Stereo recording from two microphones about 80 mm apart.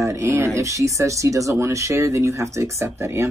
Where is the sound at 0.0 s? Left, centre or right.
Right.